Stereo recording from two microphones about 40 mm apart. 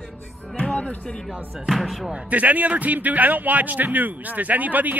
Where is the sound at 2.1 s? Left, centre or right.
Right.